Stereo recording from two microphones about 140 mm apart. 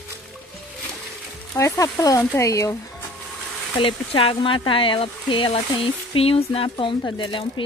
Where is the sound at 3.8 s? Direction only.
40° left (ahead or behind).